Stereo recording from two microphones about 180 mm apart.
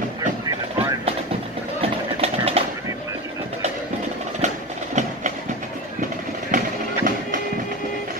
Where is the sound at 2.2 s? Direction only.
35° right (ahead or behind).